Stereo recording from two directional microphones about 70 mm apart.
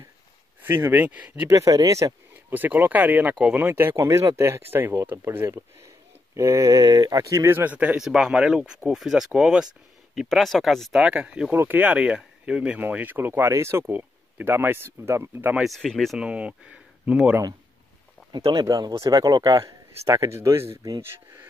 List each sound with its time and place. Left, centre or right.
0.7 s speech: right
1.5 s speech: right
2.5 s speech: right
6.3 s speech: right
6.8 s speech: right
7.5 s speech: right
8.0 s speech: centre
10.9 s speech: centre
11.5 s speech: right
12.8 s speech: right
15.6 s speech: centre
16.2 s speech: centre
18.3 s speech: right
20.2 s speech: right